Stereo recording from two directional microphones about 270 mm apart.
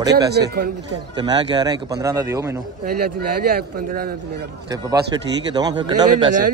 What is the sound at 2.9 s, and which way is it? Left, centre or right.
A man's voice, right.